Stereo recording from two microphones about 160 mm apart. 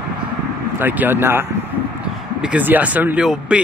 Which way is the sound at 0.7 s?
10° right (ahead or behind).